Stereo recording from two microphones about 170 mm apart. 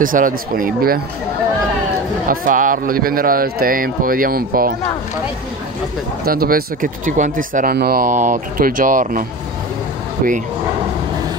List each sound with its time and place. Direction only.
0.0 s speech: 55° right (ahead or behind)
2.2 s speech: 50° right (ahead or behind)
6.2 s speech: 60° right (ahead or behind)